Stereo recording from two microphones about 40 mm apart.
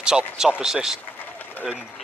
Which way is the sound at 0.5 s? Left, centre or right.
Centre.